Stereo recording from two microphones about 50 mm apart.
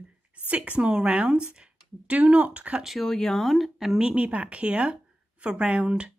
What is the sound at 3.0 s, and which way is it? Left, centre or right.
Speech, centre.